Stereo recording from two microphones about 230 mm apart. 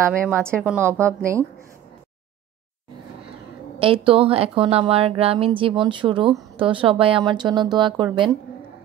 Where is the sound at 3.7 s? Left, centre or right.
Right.